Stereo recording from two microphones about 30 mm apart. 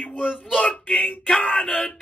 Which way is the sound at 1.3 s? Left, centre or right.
Left.